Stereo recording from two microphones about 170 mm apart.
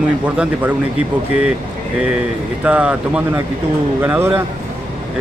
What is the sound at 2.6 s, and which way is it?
Speech, 5° right (ahead or behind).